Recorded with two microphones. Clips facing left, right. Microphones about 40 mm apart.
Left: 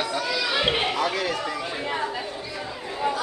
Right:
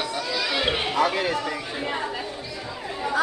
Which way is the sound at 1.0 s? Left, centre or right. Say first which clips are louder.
Right 3 dB; right.